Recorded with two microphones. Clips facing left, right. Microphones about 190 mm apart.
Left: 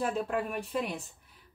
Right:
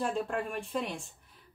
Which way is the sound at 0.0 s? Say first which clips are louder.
Left 1 dB; 5° left (ahead or behind).